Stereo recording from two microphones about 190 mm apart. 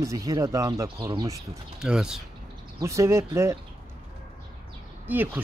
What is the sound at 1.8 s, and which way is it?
Speech, 5° right (ahead or behind).